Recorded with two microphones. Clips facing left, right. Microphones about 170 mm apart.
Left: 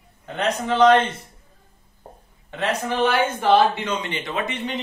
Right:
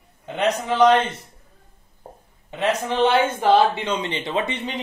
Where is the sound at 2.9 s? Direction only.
25° right (ahead or behind).